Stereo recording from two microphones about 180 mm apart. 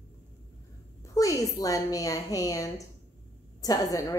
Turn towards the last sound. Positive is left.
turn(degrees=20)  # may be behind; listen again after turning